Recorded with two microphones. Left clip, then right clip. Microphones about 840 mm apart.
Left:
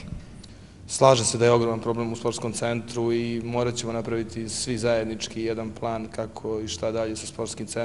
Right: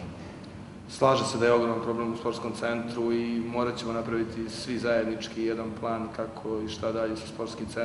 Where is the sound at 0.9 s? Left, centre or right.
Left.